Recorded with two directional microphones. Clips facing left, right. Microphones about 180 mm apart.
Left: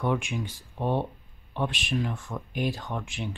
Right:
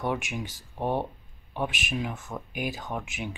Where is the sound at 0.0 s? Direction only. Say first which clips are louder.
Left 2 dB; 5° right (ahead or behind).